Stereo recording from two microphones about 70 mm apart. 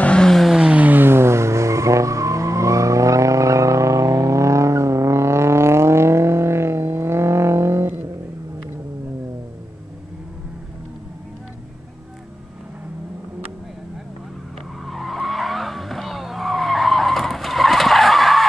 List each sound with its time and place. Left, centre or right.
0.0 s vehicle: centre
0.6 s skidding: centre; by 8.0 s right
14.9 s vehicle: centre